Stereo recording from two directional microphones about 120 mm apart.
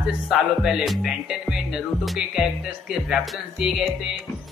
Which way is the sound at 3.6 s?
5° right (ahead or behind).